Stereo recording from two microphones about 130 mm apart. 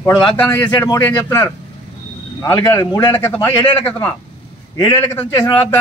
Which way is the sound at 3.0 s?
20° left (ahead or behind).